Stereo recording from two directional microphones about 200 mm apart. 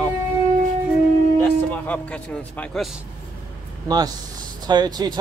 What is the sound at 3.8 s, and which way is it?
Speech, 20° right (ahead or behind).